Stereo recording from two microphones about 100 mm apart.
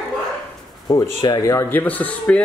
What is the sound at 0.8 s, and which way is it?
Speech, 40° left (ahead or behind).